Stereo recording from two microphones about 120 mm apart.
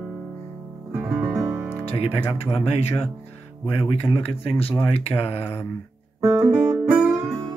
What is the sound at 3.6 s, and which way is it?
Speech, 50° left (ahead or behind).